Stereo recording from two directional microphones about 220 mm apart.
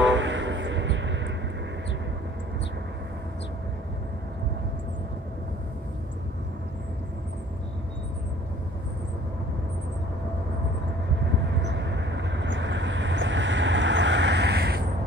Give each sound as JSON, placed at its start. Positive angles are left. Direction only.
{"t": 0.0, "sound": "vehicle", "side_deg": -55}
{"t": 11.4, "sound": "vehicle", "side_deg": -55}